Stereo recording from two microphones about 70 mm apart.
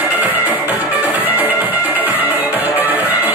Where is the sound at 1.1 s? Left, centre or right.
Right.